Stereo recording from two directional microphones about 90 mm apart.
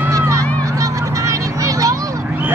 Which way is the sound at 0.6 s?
35° right (ahead or behind).